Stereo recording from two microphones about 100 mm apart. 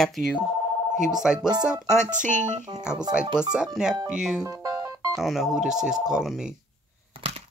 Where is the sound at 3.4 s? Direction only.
10° right (ahead or behind).